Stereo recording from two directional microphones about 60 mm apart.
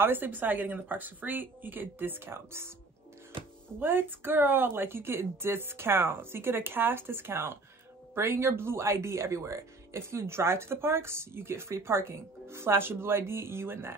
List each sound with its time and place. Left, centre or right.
0.0 s speech: right
3.8 s speech: right